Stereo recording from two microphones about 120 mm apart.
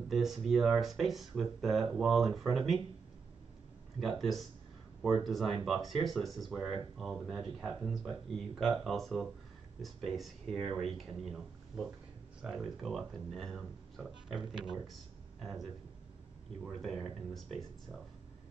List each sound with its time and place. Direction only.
0.1 s speech: centre (ahead or behind)
4.2 s speech: centre (ahead or behind)